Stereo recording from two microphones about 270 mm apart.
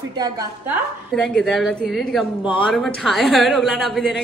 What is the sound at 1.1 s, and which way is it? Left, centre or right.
A woman's voice, centre.